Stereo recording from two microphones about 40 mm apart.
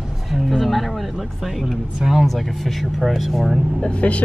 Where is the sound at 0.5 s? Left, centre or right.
Centre.